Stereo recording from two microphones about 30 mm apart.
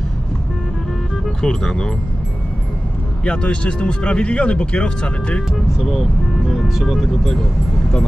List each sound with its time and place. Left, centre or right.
1.4 s speech: centre
3.3 s speech: left
5.8 s speech: centre